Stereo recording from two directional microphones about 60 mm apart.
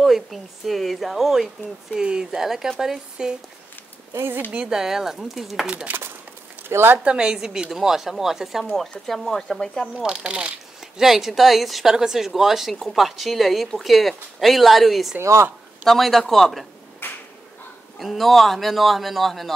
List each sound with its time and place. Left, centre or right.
0.0 s a woman's voice: centre
4.5 s speech: centre
5.9 s speech: right
6.7 s speech: right
7.1 s speech: centre
10.0 s speech: centre
11.0 s a woman's voice: centre
17.0 s a sound: left
17.9 s a woman's voice: centre